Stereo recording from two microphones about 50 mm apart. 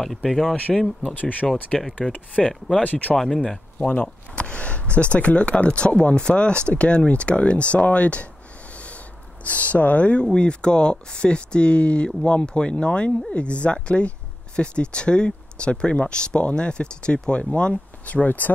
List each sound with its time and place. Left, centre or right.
0.0 s speech: centre
1.1 s speech: left
1.7 s speech: centre
2.1 s speech: left
2.8 s speech: left
8.7 s a sound: left
10.2 s speech: centre; by 18.5 s left